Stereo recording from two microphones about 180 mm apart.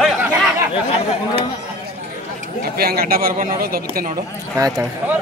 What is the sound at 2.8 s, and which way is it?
A man's voice, 60° right (ahead or behind).